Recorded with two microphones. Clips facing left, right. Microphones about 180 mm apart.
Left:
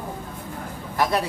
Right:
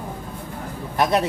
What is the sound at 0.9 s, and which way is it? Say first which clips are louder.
Speech: right 3 dB; 20° right (ahead or behind).